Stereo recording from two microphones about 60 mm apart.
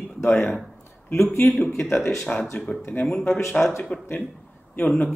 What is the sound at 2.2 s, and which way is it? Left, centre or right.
Speech, centre.